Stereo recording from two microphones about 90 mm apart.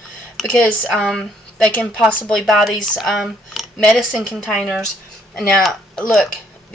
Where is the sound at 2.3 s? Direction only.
Centre (ahead or behind).